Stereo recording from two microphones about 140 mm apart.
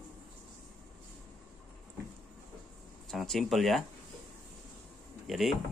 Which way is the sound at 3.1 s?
Centre (ahead or behind).